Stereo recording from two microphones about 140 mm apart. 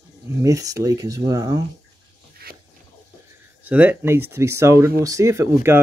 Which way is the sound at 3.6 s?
10° right (ahead or behind).